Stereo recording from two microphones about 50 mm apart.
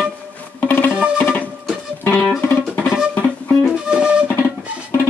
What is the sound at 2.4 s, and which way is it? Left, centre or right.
Music, left.